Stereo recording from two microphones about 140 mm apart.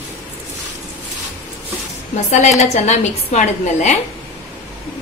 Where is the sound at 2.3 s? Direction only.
60° left (ahead or behind).